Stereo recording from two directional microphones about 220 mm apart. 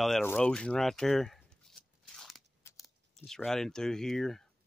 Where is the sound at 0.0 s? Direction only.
5° left (ahead or behind).